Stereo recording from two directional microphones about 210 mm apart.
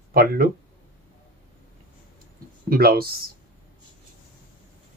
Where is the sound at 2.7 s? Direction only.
45° right (ahead or behind).